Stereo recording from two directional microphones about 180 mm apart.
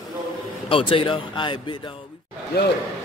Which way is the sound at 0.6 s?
30° left (ahead or behind).